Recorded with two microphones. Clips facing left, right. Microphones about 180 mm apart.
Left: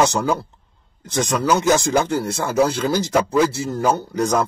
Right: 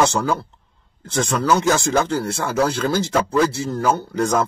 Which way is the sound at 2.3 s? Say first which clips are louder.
Left 2 dB; centre (ahead or behind).